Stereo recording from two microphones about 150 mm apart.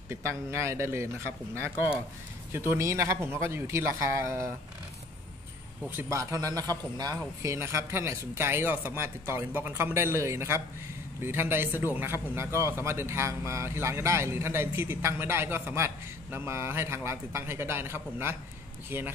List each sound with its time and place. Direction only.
0.1 s a man's voice: 15° right (ahead or behind)
5.9 s a man's voice: 15° right (ahead or behind)